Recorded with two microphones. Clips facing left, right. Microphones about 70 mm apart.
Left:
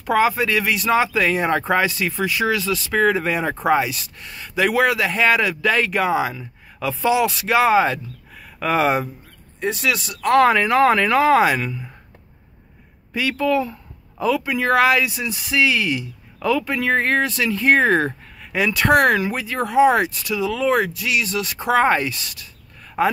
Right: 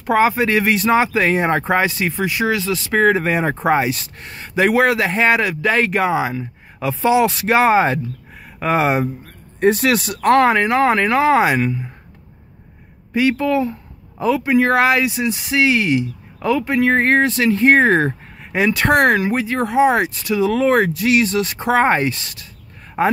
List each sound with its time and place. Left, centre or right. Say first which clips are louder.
0.0 s speech: right 3 dB; right
9.6 s speech: right 7 dB; right
10.3 s speech: right 1 dB; right
13.1 s speech: right 3 dB; right